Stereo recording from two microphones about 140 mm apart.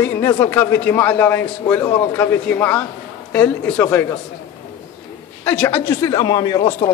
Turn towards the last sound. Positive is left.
turn(degrees=25)  # may be behind; listen again after turning